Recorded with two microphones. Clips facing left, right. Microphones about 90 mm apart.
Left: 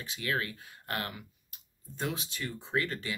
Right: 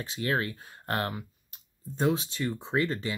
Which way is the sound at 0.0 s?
35° right (ahead or behind).